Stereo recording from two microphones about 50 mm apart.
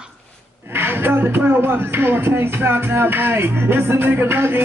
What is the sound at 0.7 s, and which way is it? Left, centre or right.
Speech, right.